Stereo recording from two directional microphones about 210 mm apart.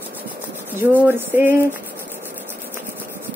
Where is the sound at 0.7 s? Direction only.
10° right (ahead or behind).